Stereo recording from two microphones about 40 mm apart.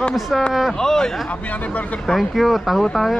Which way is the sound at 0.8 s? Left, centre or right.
Centre.